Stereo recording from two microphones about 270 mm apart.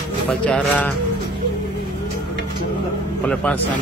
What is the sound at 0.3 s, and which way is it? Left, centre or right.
Music, centre.